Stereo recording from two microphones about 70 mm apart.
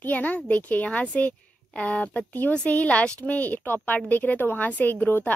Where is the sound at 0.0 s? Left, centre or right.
Left.